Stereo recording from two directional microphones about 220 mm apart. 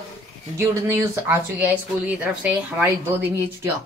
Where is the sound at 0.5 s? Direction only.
10° right (ahead or behind).